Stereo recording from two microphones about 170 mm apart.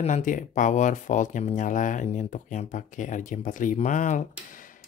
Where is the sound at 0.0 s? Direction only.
45° left (ahead or behind).